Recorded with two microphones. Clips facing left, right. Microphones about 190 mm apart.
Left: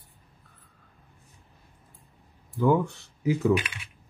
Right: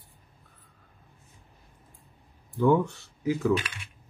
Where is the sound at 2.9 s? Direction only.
20° left (ahead or behind).